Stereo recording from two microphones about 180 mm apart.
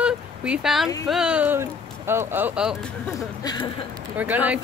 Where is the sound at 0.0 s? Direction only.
5° right (ahead or behind).